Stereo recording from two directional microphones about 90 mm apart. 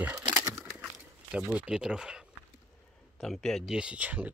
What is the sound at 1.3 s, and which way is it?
Speech, 10° right (ahead or behind).